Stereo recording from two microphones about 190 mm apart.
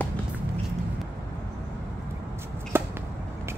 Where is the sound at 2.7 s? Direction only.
10° right (ahead or behind).